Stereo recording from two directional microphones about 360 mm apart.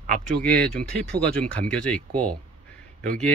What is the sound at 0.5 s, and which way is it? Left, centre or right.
Speech, right.